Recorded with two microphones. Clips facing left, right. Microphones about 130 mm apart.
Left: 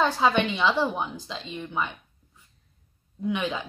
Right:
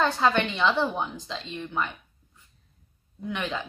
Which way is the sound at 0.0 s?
5° left (ahead or behind).